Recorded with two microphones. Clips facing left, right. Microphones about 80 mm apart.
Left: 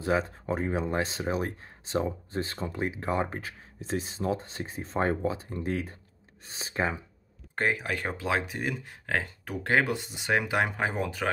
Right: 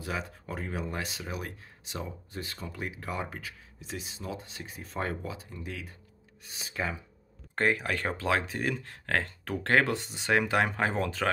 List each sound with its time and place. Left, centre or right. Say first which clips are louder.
0.0 s speech: left 8 dB; left
7.5 s speech: right 1 dB; centre